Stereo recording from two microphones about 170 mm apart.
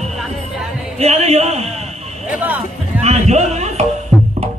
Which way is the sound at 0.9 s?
40° right (ahead or behind).